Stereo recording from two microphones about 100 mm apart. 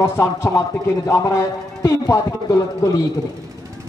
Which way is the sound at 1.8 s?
35° left (ahead or behind).